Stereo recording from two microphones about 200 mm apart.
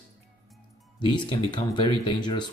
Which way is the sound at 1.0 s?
25° left (ahead or behind).